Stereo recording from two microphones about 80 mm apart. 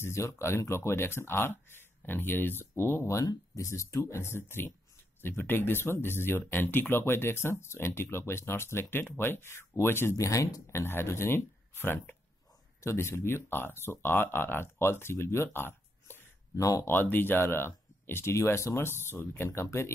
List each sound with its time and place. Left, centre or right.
0.0 s speech: left